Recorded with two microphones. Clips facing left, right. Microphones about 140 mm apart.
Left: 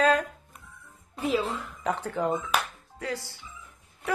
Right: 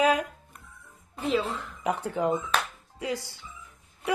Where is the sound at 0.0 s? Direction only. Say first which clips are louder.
Even; 10° right (ahead or behind).